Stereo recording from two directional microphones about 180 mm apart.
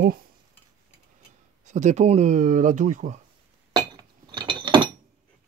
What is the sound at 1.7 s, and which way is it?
Speech, 40° right (ahead or behind).